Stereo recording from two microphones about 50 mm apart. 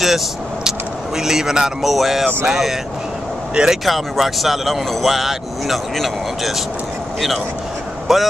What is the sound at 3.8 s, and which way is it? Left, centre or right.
Speech, centre.